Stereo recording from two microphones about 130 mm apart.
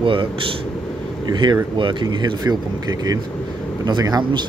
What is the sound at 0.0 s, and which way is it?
Speech, 40° right (ahead or behind).